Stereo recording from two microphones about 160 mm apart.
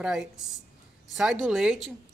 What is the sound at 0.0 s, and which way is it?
A woman's voice, 5° right (ahead or behind).